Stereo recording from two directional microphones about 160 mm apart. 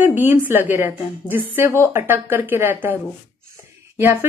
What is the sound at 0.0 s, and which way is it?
Speech, 10° right (ahead or behind).